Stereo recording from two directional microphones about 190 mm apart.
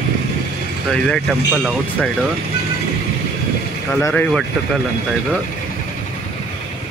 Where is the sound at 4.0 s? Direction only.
15° left (ahead or behind).